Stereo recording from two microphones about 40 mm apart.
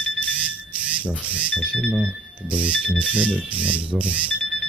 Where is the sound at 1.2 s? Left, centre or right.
Right.